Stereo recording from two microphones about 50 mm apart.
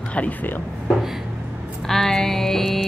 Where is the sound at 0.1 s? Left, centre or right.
Left.